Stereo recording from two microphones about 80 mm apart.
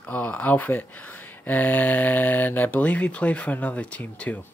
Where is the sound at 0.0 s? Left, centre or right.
Centre.